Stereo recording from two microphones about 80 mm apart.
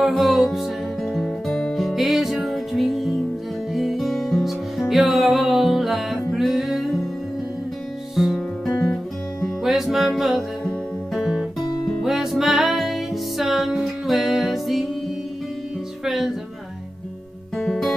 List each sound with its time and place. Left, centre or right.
0.0 s music: centre
8.2 s music: centre
11.1 s guitar: centre
12.0 s music: centre
17.6 s guitar: centre